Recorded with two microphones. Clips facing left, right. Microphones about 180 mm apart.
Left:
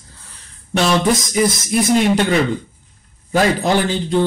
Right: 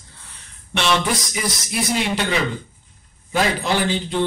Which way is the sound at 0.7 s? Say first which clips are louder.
Left 5 dB; 40° left (ahead or behind).